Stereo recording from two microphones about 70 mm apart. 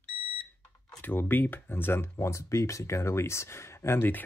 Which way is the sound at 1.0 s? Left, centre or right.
Left.